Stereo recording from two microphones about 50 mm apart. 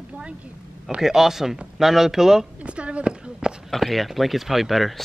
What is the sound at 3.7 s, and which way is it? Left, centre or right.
Speech, centre.